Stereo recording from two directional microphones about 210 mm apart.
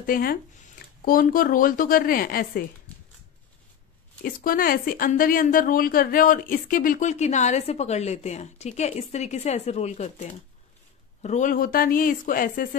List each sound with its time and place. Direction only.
0.0 s a woman's voice: 45° left (ahead or behind)
4.2 s a woman's voice: 40° left (ahead or behind)